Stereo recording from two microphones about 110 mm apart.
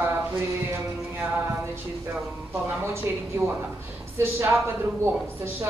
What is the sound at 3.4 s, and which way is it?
Speech, 20° right (ahead or behind).